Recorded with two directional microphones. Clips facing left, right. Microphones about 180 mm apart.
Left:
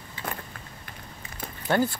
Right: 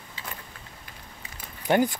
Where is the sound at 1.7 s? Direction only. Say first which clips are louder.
Right 2 dB; 15° right (ahead or behind).